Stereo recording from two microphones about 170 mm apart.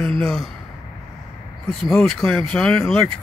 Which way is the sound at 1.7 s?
Centre (ahead or behind).